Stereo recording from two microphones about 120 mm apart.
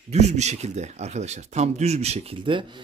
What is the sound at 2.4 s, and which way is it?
Speech, 45° right (ahead or behind).